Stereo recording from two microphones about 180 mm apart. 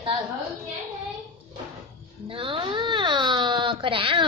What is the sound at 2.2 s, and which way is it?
Baby cry, 30° right (ahead or behind).